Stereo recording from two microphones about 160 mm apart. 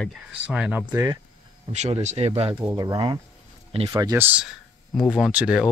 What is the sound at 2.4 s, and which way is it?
Speech, 35° right (ahead or behind).